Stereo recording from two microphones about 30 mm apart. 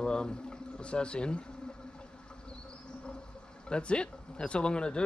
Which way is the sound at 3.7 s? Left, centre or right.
Left.